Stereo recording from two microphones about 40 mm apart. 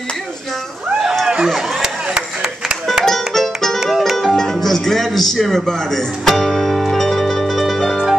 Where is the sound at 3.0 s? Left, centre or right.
Centre.